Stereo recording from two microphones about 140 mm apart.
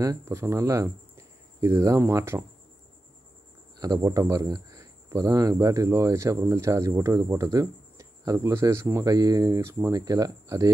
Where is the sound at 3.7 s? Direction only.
25° right (ahead or behind).